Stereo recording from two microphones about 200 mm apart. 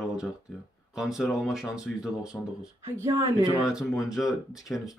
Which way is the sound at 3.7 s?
15° left (ahead or behind).